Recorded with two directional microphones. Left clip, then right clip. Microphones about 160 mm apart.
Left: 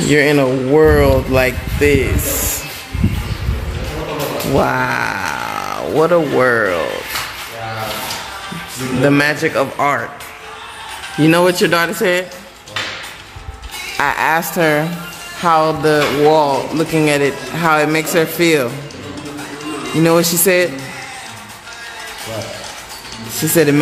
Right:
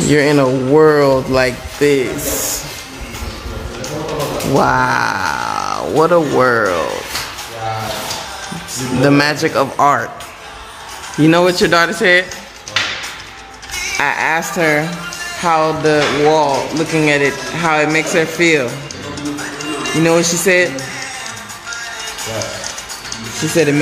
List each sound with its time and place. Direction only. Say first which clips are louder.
0.1 s speech: even; centre (ahead or behind)
4.6 s speech: right 3 dB; centre (ahead or behind)
4.8 s a sound: right 3 dB; 5° right (ahead or behind)
5.2 s music: right 3 dB; 5° left (ahead or behind)
5.8 s speech: right 1 dB; 5° left (ahead or behind)
9.0 s speech: right 1 dB; 5° right (ahead or behind)
11.1 s speech: right 1 dB; centre (ahead or behind)
13.9 s a woman's voice: left 1 dB; 20° left (ahead or behind)
20.0 s speech: left 1 dB; 15° left (ahead or behind)
23.5 s a woman's voice: left 1 dB; 30° left (ahead or behind)